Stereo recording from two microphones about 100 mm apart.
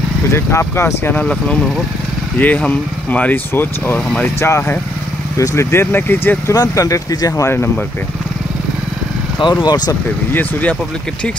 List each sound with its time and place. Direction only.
0.3 s speech: 25° left (ahead or behind)
1.1 s speech: 10° left (ahead or behind)
6.5 s speech: 40° left (ahead or behind)
9.4 s speech: 50° left (ahead or behind)
10.3 s speech: 15° left (ahead or behind)